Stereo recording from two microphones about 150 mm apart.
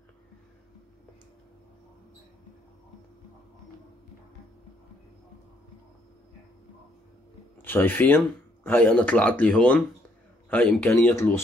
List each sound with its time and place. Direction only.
7.6 s a man's voice: 15° left (ahead or behind)